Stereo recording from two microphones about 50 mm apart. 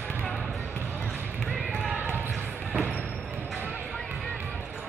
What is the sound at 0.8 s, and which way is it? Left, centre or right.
Basketball bounce, right.